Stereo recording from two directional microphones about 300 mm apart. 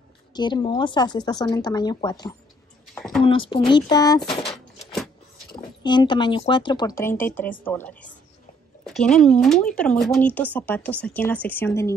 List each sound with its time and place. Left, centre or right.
0.3 s a woman's voice: centre
2.9 s a sound: centre
3.3 s a woman's voice: centre